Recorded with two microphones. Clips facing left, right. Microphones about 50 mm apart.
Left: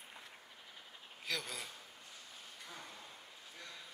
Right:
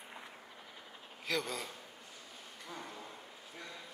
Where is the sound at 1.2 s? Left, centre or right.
Centre.